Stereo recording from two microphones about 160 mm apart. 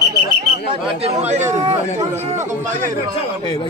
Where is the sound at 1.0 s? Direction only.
45° right (ahead or behind).